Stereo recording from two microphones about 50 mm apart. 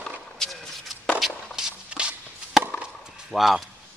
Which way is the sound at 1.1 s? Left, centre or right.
Centre.